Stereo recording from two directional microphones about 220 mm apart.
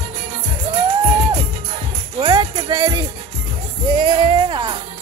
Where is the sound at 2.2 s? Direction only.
20° right (ahead or behind).